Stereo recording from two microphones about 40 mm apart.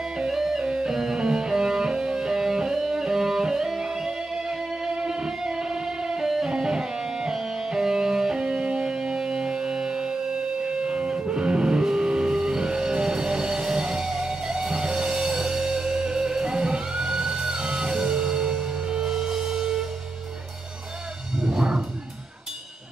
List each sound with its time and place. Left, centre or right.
0.3 s music: centre
21.4 s music: centre